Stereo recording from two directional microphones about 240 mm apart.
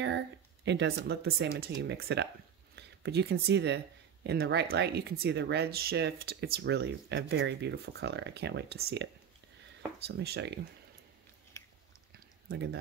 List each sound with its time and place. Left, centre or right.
0.7 s speech: right